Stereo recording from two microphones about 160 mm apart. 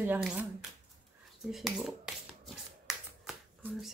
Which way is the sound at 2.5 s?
5° right (ahead or behind).